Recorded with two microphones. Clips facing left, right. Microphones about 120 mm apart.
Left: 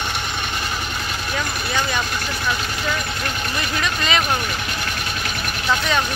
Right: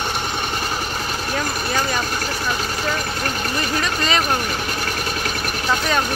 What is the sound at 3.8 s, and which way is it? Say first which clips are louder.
Speech: left 1 dB; 40° right (ahead or behind).